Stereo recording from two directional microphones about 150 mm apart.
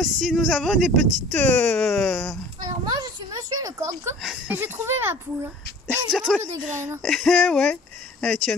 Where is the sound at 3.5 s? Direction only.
25° right (ahead or behind).